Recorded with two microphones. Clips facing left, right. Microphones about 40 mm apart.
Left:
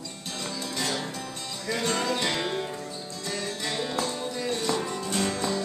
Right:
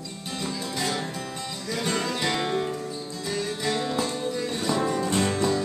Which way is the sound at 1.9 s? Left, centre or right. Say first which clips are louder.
Right 1 dB; centre.